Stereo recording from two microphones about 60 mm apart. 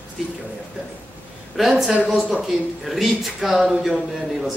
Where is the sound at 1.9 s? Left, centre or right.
Centre.